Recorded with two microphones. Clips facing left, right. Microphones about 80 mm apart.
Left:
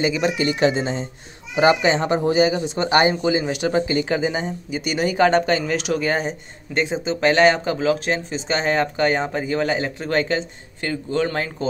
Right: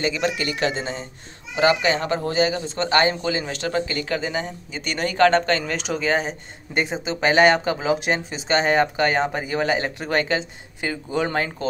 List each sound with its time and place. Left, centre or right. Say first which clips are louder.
0.0 s speech: left 3 dB; centre
7.8 s speech: left 2 dB; centre
8.1 s speech: right 1 dB; centre